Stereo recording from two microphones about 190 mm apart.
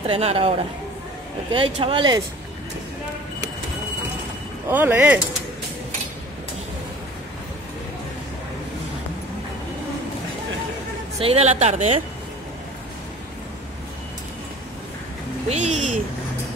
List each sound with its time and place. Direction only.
0.1 s speech: 30° right (ahead or behind)
4.6 s speech: 10° right (ahead or behind)
11.1 s speech: 30° right (ahead or behind)
15.5 s speech: 35° right (ahead or behind)